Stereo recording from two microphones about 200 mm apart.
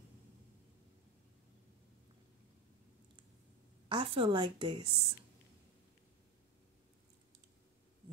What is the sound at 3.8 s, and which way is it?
Speech, 25° right (ahead or behind).